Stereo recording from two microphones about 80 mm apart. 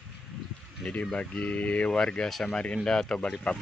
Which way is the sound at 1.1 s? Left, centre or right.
Centre.